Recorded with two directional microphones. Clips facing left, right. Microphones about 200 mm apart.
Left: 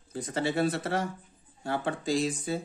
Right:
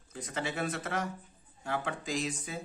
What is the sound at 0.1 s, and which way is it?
Speech, 35° left (ahead or behind).